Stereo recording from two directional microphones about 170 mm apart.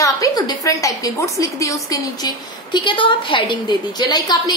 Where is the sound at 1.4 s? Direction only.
20° left (ahead or behind).